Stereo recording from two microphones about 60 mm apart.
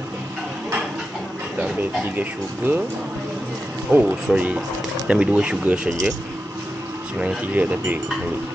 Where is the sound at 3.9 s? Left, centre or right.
Right.